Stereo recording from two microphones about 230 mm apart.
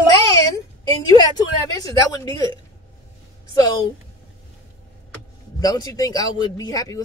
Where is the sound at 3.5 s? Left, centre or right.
Centre.